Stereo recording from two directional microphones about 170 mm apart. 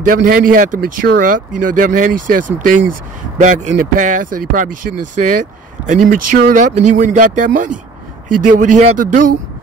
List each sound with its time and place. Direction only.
0.0 s speech: 55° right (ahead or behind)